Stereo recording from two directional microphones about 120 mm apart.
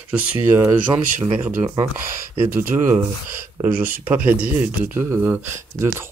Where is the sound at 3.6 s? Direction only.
15° right (ahead or behind).